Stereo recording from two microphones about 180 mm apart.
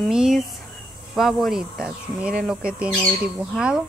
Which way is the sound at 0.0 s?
Centre (ahead or behind).